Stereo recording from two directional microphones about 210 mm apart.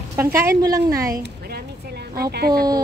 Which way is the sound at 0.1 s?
15° right (ahead or behind).